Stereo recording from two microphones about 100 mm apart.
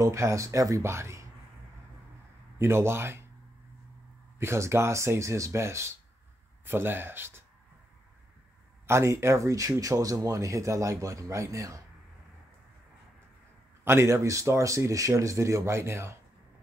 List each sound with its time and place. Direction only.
0.0 s speech: 30° right (ahead or behind)
2.6 s speech: 25° right (ahead or behind)
4.4 s speech: 25° right (ahead or behind)
8.8 s speech: 25° right (ahead or behind)
13.8 s speech: 25° right (ahead or behind)